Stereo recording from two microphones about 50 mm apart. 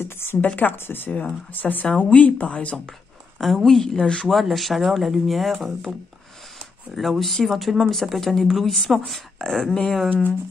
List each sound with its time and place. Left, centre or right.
0.0 s a sound: left
0.6 s speech: left
1.9 s speech: left
3.3 s speech: centre
4.3 s speech: centre
7.0 s speech: centre